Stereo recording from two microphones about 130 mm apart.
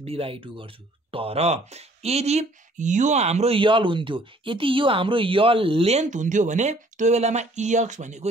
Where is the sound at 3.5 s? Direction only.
40° right (ahead or behind).